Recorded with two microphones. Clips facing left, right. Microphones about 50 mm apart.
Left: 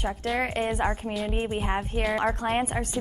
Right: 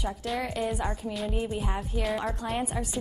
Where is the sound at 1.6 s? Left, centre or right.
Left.